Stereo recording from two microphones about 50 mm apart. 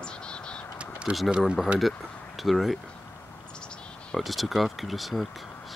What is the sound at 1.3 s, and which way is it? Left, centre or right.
Speech, centre.